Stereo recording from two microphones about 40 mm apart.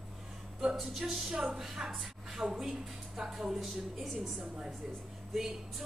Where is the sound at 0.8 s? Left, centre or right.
Centre.